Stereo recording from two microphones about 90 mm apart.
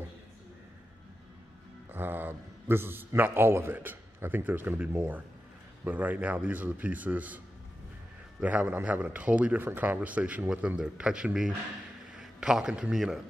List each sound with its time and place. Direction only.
1.9 s mantra: 20° right (ahead or behind)
3.2 s a man's voice: 25° right (ahead or behind); by 13.2 s 5° right (ahead or behind)